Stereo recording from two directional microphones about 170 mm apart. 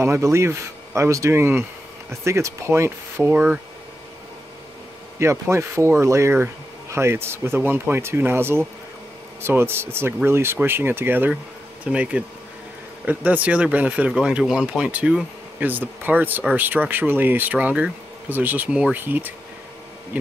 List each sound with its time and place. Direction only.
0.0 s speech: 15° right (ahead or behind)
5.2 s speech: 15° right (ahead or behind)